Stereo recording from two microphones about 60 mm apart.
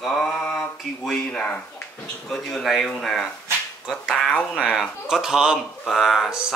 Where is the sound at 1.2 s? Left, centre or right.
Left.